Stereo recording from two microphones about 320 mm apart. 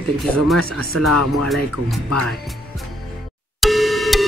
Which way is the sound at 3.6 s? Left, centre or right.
Centre.